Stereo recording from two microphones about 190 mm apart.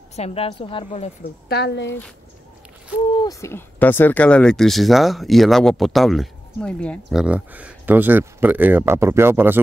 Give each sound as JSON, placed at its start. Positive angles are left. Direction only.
{"t": 0.1, "sound": "a woman's voice", "side_deg": 35}
{"t": 1.5, "sound": "speech", "side_deg": 60}
{"t": 3.3, "sound": "speech", "side_deg": 15}